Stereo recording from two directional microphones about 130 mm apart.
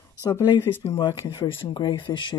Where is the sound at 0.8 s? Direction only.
45° left (ahead or behind).